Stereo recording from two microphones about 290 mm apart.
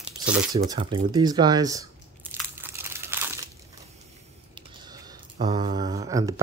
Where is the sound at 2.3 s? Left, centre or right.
Centre.